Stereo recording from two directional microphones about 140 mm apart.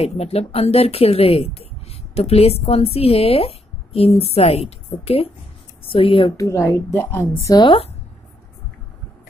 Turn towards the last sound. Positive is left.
turn(degrees=40)  # may be behind; listen again after turning